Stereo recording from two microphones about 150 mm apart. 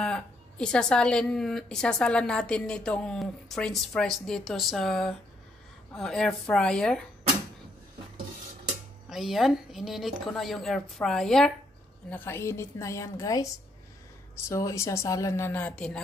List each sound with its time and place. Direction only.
0.0 s speech: 5° left (ahead or behind)
9.1 s speech: centre (ahead or behind)
12.1 s speech: 15° left (ahead or behind)
14.5 s speech: 20° left (ahead or behind)